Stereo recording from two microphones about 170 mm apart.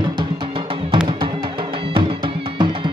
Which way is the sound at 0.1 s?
25° right (ahead or behind).